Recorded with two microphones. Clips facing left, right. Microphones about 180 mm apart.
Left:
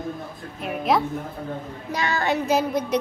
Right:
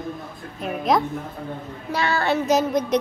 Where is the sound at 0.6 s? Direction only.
5° left (ahead or behind).